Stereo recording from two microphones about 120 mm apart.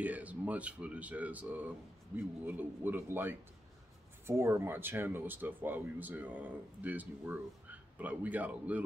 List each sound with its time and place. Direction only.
0.0 s speech: 15° right (ahead or behind)